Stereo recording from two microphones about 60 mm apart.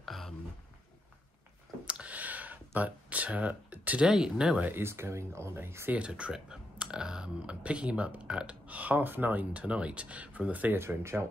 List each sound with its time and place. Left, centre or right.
0.0 s a sound: centre
1.9 s a sound: right
4.1 s speech: centre
4.6 s speech: right
4.8 s speech: right
5.9 s speech: right
10.8 s speech: right